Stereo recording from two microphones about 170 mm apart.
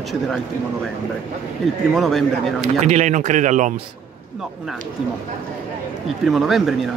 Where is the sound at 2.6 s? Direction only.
40° right (ahead or behind).